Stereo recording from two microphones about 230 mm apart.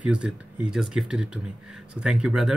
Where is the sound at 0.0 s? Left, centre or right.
Centre.